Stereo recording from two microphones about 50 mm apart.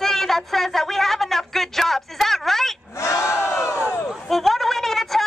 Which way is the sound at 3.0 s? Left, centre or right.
Left.